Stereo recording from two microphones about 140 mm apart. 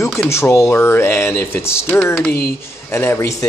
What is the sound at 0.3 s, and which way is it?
A man's voice, 20° left (ahead or behind).